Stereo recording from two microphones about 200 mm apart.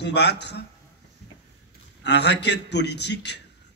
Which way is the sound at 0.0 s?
55° left (ahead or behind).